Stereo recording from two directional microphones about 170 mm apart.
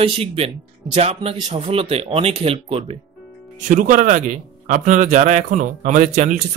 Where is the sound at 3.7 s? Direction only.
50° right (ahead or behind).